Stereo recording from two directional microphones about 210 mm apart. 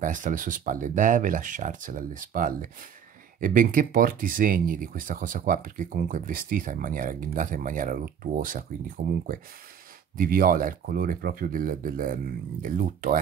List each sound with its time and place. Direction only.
0.0 s speech: 40° right (ahead or behind)